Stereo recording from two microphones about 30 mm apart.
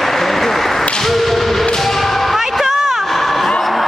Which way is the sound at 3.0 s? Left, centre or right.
Centre.